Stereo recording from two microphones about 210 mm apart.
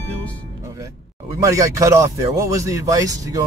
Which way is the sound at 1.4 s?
15° right (ahead or behind).